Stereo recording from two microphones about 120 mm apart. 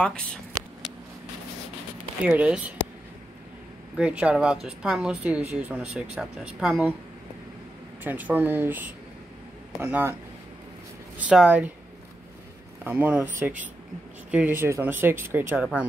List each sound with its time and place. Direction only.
0.0 s speech: 5° left (ahead or behind)
2.2 s a woman's voice: 10° right (ahead or behind)
3.9 s a woman's voice: 10° right (ahead or behind)
8.0 s a woman's voice: 15° right (ahead or behind)
11.1 s a woman's voice: 10° right (ahead or behind)
12.9 s a woman's voice: 15° right (ahead or behind)